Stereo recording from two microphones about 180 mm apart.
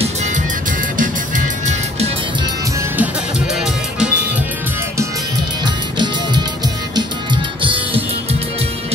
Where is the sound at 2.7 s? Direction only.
10° right (ahead or behind).